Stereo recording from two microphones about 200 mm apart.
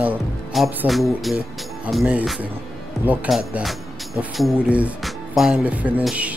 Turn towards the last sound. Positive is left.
turn(degrees=-5)  # may be behind; listen again after turning